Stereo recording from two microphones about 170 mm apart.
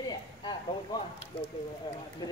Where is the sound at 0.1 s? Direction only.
25° left (ahead or behind).